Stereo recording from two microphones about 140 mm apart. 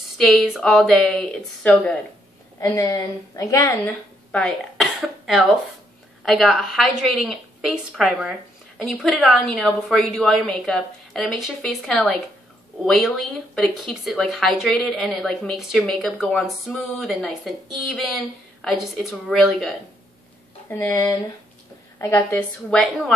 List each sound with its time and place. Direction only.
0.3 s speech: centre (ahead or behind)
2.7 s speech: 25° left (ahead or behind)
4.3 s speech: 5° left (ahead or behind)
20.8 s a woman's voice: 20° left (ahead or behind); by 23.1 s 5° left (ahead or behind)